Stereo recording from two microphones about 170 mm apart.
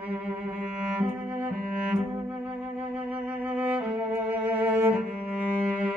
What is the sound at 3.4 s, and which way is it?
Music, 10° right (ahead or behind).